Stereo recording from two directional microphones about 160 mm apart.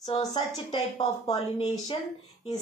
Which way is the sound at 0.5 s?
35° left (ahead or behind).